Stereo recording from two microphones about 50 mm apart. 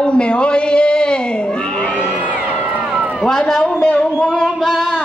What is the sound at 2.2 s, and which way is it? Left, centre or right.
Crowd, right.